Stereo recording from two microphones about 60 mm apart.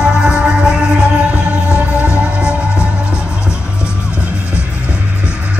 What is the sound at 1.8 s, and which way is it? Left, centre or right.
Music, right.